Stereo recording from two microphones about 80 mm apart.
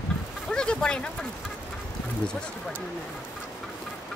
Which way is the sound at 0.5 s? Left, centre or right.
Centre.